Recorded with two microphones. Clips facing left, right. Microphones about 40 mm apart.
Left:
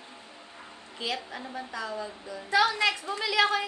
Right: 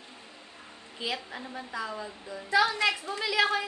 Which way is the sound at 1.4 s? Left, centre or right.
Centre.